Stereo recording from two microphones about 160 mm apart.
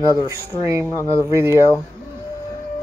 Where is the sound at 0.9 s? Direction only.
20° left (ahead or behind).